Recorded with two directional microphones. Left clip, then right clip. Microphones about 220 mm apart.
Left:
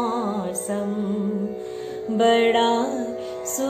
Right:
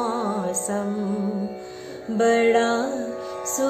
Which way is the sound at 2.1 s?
10° right (ahead or behind).